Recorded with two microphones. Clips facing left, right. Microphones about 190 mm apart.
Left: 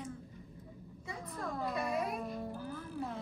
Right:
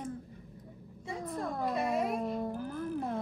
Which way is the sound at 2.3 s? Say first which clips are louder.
Right 6 dB; 60° right (ahead or behind).